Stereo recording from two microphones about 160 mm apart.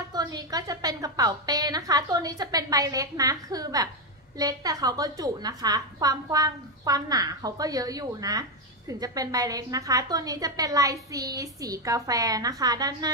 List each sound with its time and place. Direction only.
0.1 s a woman's voice: 25° right (ahead or behind)